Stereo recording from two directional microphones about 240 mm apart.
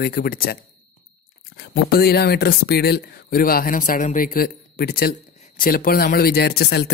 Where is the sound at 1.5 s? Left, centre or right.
Left.